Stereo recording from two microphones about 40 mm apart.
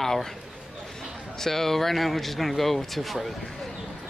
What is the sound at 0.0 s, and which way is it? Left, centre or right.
Speech, centre.